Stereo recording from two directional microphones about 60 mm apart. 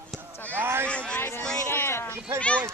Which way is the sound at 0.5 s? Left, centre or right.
Right.